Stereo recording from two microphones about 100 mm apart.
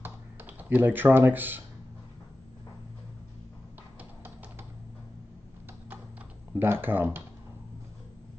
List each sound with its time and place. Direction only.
0.6 s speech: 20° right (ahead or behind)
6.5 s speech: 20° right (ahead or behind)